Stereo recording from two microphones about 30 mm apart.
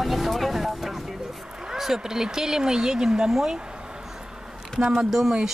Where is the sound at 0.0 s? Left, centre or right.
Centre.